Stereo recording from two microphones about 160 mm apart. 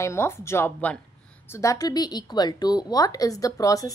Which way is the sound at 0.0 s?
15° left (ahead or behind).